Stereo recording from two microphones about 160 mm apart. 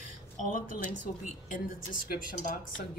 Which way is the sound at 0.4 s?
55° left (ahead or behind).